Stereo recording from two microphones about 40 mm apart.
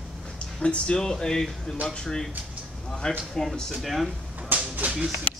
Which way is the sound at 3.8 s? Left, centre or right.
Centre.